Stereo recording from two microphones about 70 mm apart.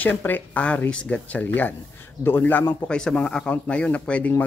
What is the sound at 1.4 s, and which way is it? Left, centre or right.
Speech, left.